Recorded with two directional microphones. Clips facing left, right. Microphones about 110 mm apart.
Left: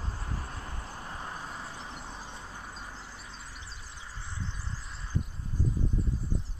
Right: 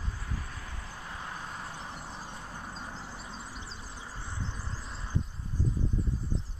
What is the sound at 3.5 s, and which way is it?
Vehicle, 30° right (ahead or behind).